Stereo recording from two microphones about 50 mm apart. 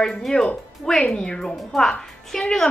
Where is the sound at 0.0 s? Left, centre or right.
Centre.